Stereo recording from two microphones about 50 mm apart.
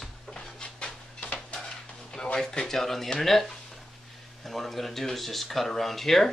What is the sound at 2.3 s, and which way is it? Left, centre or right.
Speech, centre.